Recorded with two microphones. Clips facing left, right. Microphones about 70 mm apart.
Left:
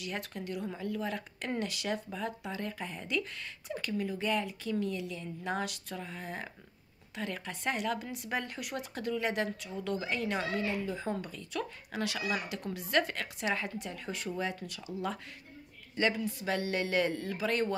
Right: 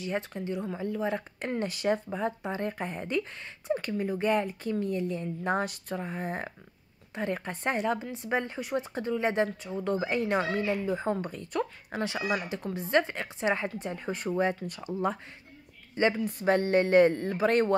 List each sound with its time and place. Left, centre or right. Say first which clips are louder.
0.0 s speech: right 6 dB; right
15.9 s speech: right 4 dB; right
16.3 s speech: right 8 dB; right